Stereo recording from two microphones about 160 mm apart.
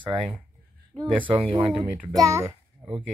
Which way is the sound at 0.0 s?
30° right (ahead or behind).